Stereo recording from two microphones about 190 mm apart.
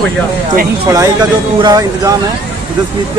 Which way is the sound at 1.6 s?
20° right (ahead or behind).